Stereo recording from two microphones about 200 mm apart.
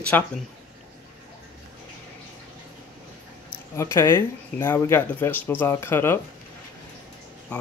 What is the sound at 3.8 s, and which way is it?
Speech, 15° left (ahead or behind).